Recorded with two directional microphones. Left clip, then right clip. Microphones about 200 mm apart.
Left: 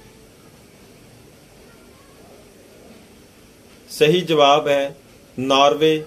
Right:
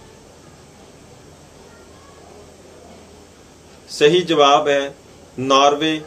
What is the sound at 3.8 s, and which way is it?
Speech, 40° left (ahead or behind).